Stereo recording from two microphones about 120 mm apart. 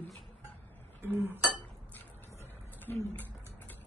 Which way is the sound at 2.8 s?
15° left (ahead or behind).